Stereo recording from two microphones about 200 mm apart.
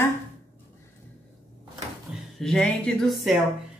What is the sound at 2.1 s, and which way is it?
Speech, centre (ahead or behind).